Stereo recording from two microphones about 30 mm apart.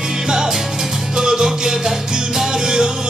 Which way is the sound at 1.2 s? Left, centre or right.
Centre.